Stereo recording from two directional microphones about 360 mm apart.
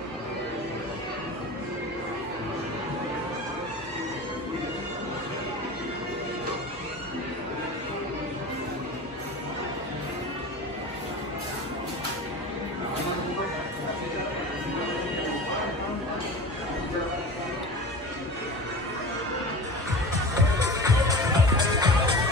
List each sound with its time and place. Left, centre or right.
20.3 s music: centre